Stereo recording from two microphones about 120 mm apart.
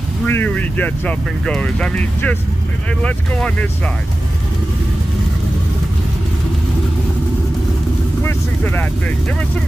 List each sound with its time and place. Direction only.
0.3 s speech: 15° left (ahead or behind)
8.2 s vehicle: 20° left (ahead or behind)